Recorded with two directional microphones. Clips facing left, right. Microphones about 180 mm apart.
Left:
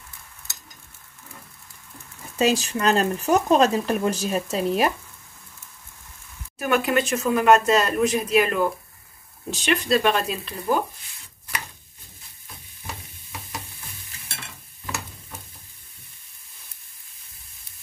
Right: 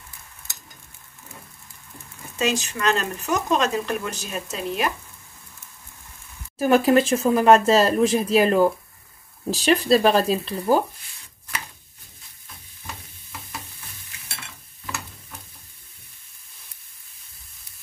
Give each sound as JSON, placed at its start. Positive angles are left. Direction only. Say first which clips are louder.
{"t": 2.3, "sound": "speech", "louder": "left 3 dB", "side_deg": 35}
{"t": 6.6, "sound": "speech", "louder": "right 5 dB", "side_deg": -30}
{"t": 12.8, "sound": "stir", "louder": "left 1 dB", "side_deg": 5}